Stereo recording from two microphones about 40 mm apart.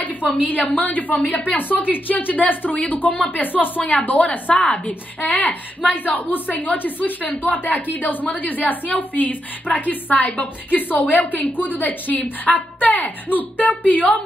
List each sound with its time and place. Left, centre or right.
0.5 s a woman's voice: left